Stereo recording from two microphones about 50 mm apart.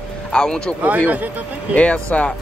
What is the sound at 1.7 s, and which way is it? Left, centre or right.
Speech, left.